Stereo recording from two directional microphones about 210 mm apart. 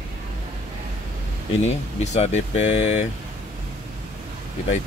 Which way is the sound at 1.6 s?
30° left (ahead or behind).